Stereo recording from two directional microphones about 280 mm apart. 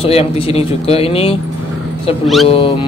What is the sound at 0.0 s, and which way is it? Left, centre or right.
Speech, left.